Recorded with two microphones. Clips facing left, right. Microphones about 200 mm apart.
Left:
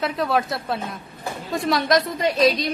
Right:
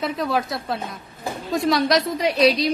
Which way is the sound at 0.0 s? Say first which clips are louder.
Left 1 dB; centre (ahead or behind).